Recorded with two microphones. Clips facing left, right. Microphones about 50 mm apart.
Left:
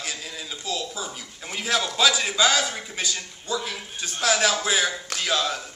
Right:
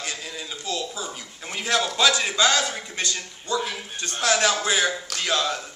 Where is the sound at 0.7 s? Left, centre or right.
Centre.